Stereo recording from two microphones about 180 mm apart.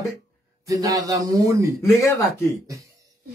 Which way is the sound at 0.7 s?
20° right (ahead or behind).